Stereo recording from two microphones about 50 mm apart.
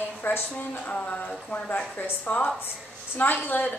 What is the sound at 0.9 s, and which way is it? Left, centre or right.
Speech, left.